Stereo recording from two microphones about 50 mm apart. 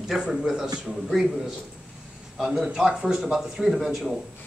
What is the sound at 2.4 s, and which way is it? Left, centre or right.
A man's voice, centre.